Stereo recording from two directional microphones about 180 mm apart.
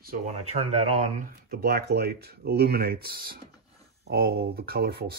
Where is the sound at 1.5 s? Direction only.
60° right (ahead or behind).